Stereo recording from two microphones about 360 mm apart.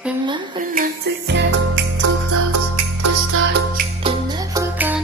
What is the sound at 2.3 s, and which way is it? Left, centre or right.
Music, right.